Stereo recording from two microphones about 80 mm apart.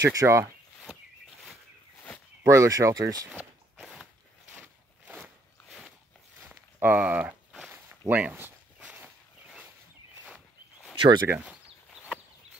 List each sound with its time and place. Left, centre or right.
0.1 s speech: right
2.4 s speech: right
3.7 s a sound: centre
4.6 s a sound: centre
8.1 s speech: right
8.8 s walk: centre
11.0 s speech: right
11.2 s speech: centre